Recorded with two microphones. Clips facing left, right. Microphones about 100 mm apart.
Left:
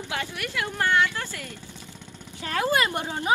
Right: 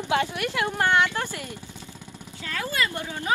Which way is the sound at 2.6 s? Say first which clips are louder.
Left 4 dB; 25° left (ahead or behind).